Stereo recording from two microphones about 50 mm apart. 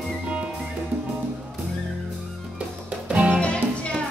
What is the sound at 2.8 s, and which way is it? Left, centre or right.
Music, right.